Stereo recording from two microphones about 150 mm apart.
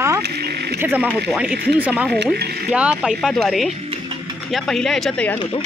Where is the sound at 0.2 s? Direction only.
90° right.